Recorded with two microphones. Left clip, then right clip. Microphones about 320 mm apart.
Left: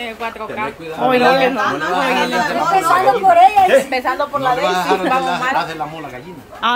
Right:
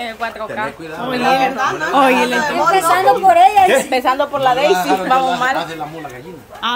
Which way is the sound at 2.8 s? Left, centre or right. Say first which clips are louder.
Even; right.